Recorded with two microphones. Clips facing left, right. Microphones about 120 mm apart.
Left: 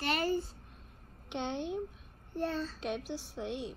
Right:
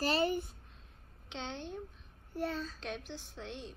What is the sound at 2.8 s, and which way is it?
Speech, 10° left (ahead or behind).